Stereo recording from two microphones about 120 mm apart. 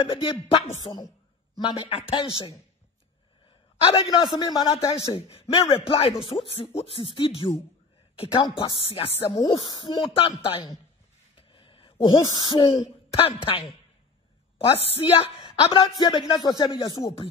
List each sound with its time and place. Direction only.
0.0 s speech: 50° left (ahead or behind)
3.8 s a man's voice: 45° left (ahead or behind)
5.1 s speech: 50° left (ahead or behind)
11.3 s a sound: 45° left (ahead or behind)
12.8 s a man's voice: 50° left (ahead or behind); by 17.3 s 35° left (ahead or behind)